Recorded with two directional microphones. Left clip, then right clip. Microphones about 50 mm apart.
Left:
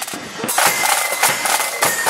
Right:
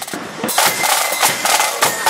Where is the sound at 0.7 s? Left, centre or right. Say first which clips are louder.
Left 1 dB; centre.